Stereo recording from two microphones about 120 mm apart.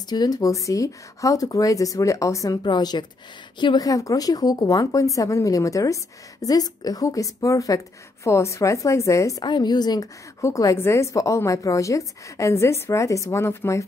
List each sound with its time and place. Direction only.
0.1 s speech: 35° left (ahead or behind)
2.6 s speech: 35° left (ahead or behind); by 13.8 s 20° left (ahead or behind)